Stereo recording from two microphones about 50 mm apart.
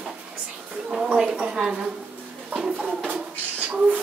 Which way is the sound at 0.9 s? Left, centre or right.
Centre.